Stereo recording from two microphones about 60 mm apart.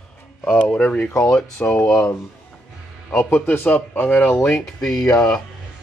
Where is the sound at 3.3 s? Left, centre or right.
Left.